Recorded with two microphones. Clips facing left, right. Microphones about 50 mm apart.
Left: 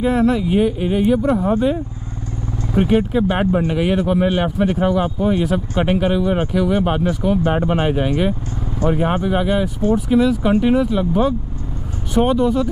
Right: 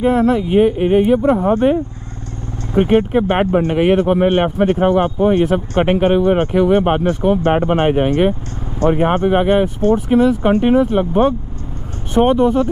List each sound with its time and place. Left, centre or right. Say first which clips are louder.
0.0 s speech: right 2 dB; right
1.2 s speech: right 3 dB; right
1.5 s speech: right 4 dB; right